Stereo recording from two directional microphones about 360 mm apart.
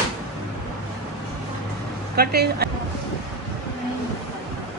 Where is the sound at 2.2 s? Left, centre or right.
Right.